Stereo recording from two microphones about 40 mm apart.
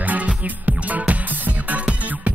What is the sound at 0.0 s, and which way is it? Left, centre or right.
Music, right.